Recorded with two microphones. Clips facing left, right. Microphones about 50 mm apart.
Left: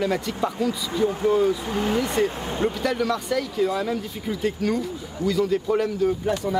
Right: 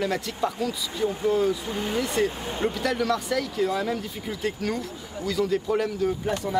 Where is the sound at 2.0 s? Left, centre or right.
Centre.